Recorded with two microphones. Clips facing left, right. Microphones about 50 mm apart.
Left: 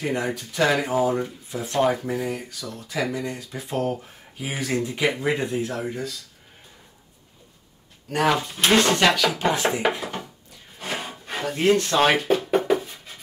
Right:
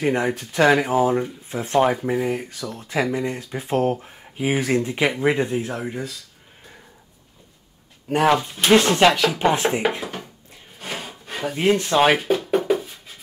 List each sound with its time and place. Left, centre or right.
0.0 s speech: right
8.1 s speech: centre
8.4 s speech: centre
10.8 s music: centre
11.4 s speech: centre
12.4 s a sound: centre